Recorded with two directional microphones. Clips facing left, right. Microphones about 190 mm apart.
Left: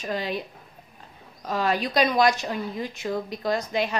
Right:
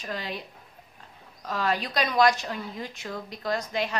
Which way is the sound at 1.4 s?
15° left (ahead or behind).